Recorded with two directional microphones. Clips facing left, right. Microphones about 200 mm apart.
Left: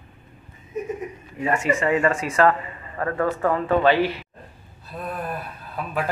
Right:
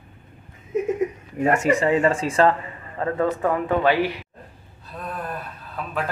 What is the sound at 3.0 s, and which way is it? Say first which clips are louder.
A man's voice: right 1 dB; 20° right (ahead or behind).